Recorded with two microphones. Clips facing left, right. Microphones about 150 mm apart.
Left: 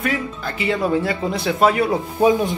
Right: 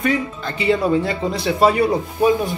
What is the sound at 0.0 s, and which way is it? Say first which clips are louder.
Speech: right 3 dB; centre (ahead or behind).